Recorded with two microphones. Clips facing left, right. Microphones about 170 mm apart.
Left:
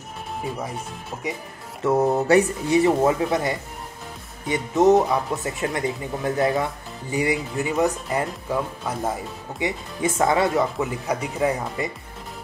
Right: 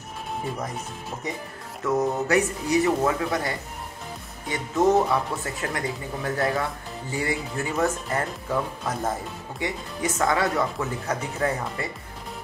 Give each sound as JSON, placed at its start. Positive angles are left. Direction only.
{"t": 1.8, "sound": "speech", "side_deg": 30}
{"t": 9.6, "sound": "speech", "side_deg": 25}